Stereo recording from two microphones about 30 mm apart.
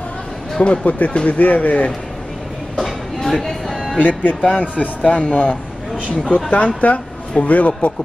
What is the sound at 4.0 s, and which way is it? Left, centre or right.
Speech, left.